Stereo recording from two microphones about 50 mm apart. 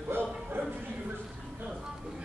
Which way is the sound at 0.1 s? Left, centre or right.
Right.